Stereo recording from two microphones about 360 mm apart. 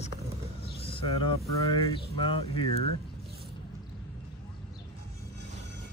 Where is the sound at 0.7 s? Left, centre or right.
Centre.